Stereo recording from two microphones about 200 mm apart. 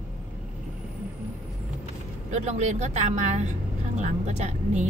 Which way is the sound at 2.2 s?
35° right (ahead or behind).